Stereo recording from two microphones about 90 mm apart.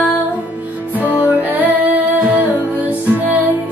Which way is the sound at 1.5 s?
20° right (ahead or behind).